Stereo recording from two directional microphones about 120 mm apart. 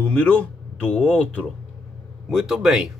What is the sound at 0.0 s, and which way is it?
Speech, 10° left (ahead or behind).